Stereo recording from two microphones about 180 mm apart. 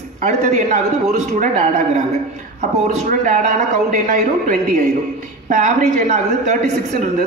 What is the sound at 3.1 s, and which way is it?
A man's voice, 45° right (ahead or behind).